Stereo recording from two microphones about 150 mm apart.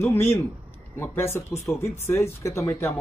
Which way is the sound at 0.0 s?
15° left (ahead or behind).